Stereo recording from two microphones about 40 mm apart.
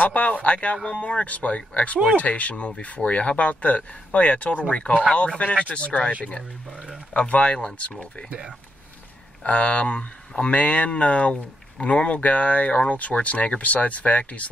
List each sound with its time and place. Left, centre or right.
0.0 s speech: left
7.2 s speech: left
9.4 s speech: left